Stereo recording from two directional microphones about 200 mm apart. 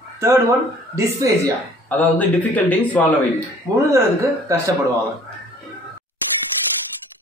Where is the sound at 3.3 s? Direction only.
15° right (ahead or behind).